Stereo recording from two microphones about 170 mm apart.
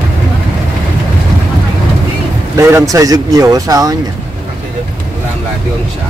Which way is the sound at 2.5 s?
15° right (ahead or behind).